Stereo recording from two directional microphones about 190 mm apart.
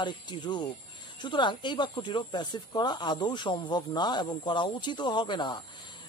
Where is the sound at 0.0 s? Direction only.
25° left (ahead or behind).